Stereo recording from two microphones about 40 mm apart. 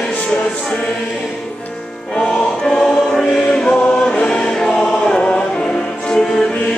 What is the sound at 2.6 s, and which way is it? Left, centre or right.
Choir, centre.